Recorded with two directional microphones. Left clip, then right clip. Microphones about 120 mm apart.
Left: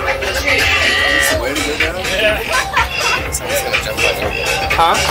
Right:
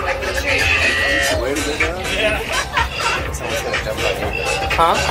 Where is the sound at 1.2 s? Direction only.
25° left (ahead or behind).